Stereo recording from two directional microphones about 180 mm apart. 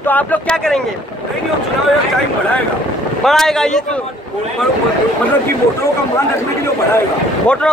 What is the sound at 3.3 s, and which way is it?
Speech, centre (ahead or behind).